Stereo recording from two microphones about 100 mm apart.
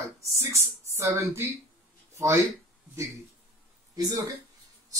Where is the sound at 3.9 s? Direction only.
35° right (ahead or behind).